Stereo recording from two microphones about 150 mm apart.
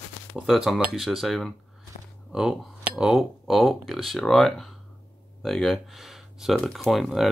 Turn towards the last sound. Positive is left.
turn(degrees=0)  # may be behind; listen again after turning